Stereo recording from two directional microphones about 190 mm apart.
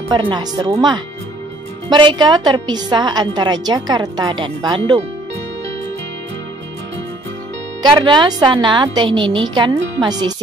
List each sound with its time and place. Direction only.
0.1 s a woman's voice: 25° right (ahead or behind)
7.8 s a woman's voice: 25° right (ahead or behind)